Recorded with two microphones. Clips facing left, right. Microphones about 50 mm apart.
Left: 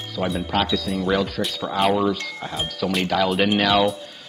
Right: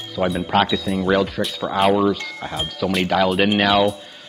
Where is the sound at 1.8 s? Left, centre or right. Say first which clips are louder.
Right 3 dB; centre.